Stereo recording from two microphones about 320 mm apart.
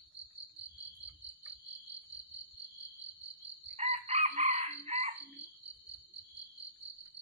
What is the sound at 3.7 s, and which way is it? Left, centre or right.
Chicken, centre.